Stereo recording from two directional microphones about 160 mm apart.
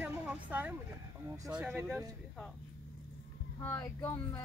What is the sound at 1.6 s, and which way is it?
Speech, 5° right (ahead or behind).